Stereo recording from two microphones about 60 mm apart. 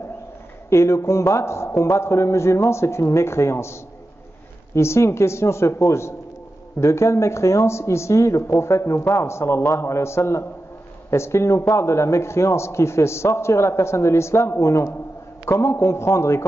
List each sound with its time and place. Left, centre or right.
0.7 s a man's voice: left
4.7 s a man's voice: left